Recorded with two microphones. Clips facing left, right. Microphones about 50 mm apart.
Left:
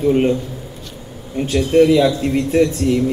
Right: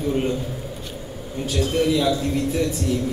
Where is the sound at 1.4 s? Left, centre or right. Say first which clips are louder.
Left 8 dB; left.